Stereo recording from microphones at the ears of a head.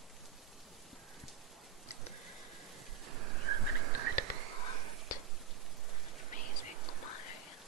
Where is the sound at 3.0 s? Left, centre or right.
Right.